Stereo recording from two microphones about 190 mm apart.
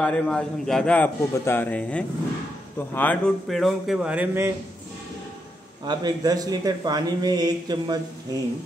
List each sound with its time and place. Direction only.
0.0 s a man's voice: 5° left (ahead or behind)
5.9 s speech: 20° right (ahead or behind)